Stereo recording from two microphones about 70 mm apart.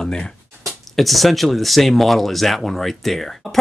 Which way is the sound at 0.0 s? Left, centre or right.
Centre.